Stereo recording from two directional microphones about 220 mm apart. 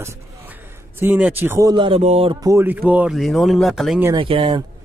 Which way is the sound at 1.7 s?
25° right (ahead or behind).